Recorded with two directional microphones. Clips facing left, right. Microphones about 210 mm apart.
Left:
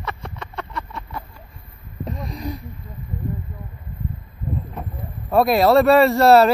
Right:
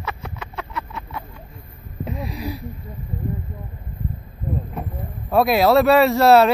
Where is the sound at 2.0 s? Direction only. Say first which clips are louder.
Right 1 dB; 5° right (ahead or behind).